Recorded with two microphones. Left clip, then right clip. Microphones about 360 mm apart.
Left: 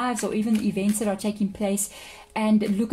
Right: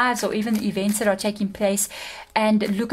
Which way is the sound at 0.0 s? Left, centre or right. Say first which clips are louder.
Right 5 dB; right.